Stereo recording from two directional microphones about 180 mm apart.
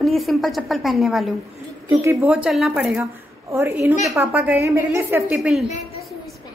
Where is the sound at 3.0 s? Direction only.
15° right (ahead or behind).